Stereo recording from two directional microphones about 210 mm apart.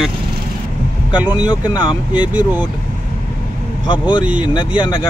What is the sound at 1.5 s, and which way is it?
Speech, 20° left (ahead or behind).